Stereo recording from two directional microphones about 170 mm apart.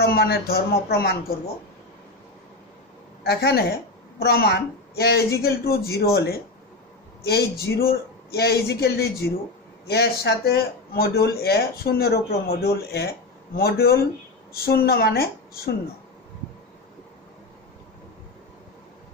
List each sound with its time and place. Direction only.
0.0 s speech: 65° left (ahead or behind)
3.3 s speech: 70° left (ahead or behind)